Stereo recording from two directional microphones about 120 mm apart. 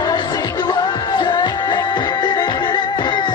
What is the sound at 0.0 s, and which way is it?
Music, 35° left (ahead or behind).